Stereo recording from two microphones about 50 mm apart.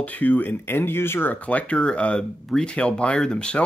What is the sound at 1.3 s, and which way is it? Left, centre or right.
Speech, left.